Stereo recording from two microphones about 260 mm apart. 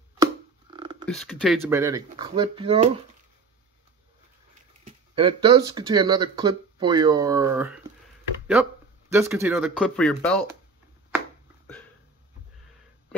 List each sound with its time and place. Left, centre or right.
1.0 s speech: centre; by 2.9 s right
4.8 s speech: centre
9.1 s speech: centre